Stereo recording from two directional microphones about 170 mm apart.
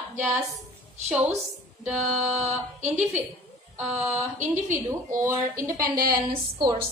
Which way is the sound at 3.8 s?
10° right (ahead or behind).